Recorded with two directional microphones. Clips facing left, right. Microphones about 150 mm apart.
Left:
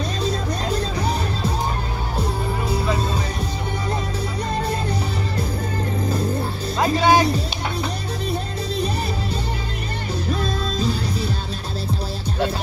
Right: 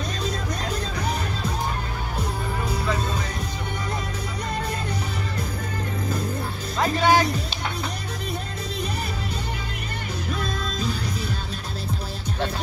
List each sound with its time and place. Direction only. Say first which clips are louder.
0.2 s music: left 5 dB; 30° left (ahead or behind)
6.8 s music: left 3 dB; 15° left (ahead or behind)
8.3 s music: left 6 dB; 30° left (ahead or behind)
10.3 s music: left 4 dB; 30° left (ahead or behind)